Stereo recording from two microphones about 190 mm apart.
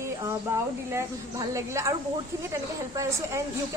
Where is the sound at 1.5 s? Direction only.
15° right (ahead or behind).